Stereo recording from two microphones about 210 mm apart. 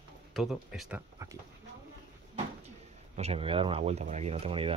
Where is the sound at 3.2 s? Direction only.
30° right (ahead or behind).